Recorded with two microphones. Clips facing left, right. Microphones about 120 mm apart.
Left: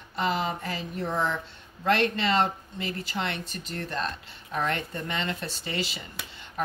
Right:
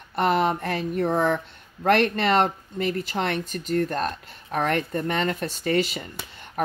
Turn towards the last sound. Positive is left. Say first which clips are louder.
# right 9 dB
turn(degrees=-50)  # may be behind; listen again after turning